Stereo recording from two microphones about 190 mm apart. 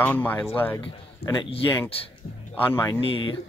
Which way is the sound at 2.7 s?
20° left (ahead or behind).